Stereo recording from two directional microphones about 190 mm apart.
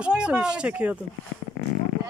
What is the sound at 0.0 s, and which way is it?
Speech, 5° right (ahead or behind).